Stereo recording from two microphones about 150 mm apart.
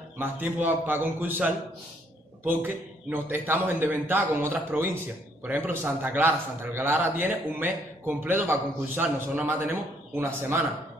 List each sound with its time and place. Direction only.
0.2 s a man's voice: 10° right (ahead or behind)